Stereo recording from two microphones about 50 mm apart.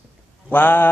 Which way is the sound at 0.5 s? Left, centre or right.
Left.